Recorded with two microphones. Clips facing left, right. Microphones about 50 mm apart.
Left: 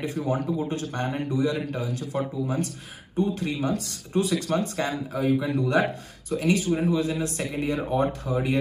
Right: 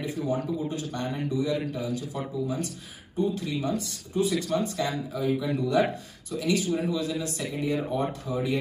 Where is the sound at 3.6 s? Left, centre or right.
Left.